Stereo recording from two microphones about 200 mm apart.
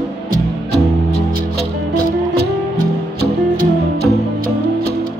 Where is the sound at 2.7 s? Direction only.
50° right (ahead or behind).